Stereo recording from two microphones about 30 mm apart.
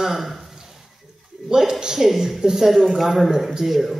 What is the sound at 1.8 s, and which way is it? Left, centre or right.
Speech, centre.